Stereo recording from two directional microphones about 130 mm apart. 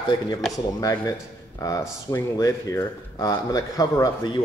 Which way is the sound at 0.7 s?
25° left (ahead or behind).